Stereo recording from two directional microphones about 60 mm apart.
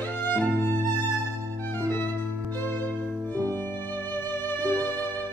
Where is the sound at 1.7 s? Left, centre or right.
Left.